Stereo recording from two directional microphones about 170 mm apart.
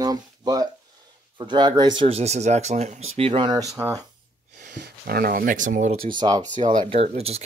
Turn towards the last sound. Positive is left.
turn(degrees=-35)  # may be behind; listen again after turning